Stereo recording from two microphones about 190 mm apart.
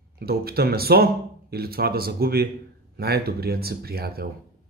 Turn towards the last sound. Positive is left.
turn(degrees=-55)  # may be behind; listen again after turning